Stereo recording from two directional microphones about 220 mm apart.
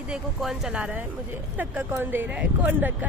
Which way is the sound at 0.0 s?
5° right (ahead or behind).